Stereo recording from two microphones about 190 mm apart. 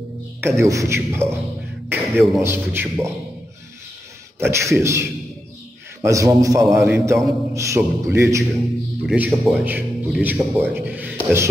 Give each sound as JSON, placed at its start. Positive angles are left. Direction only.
{"t": 0.4, "sound": "a man's voice", "side_deg": -15}
{"t": 4.4, "sound": "a man's voice", "side_deg": -15}
{"t": 6.0, "sound": "a man's voice", "side_deg": -15}